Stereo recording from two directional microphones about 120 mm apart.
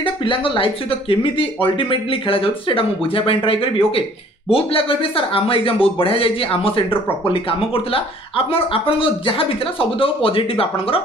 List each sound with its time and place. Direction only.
0.0 s speech: 45° left (ahead or behind)